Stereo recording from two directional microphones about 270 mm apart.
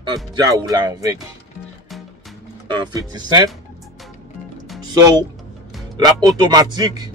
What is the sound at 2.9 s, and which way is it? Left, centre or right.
Speech, centre.